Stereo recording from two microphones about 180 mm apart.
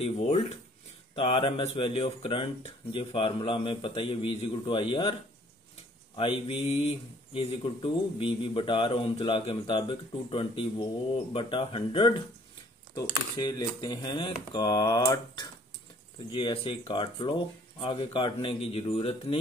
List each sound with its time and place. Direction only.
0.0 s speech: 35° left (ahead or behind)
6.1 s speech: 30° left (ahead or behind)